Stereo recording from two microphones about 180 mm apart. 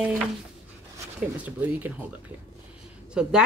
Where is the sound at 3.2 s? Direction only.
5° right (ahead or behind).